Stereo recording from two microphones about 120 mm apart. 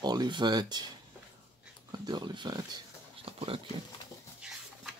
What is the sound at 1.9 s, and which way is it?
Speech, 35° right (ahead or behind).